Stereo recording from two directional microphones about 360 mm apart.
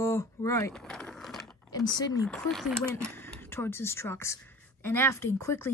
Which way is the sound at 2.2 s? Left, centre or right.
Centre.